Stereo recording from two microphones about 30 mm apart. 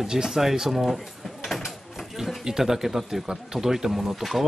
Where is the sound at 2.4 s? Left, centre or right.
Centre.